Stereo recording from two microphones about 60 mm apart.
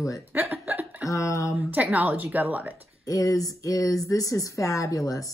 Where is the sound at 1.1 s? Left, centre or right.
Left.